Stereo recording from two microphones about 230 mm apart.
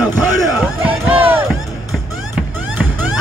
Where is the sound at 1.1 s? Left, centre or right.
Centre.